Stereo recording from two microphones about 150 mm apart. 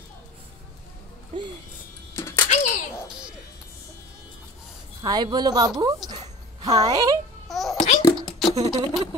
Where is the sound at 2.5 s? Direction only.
60° left (ahead or behind).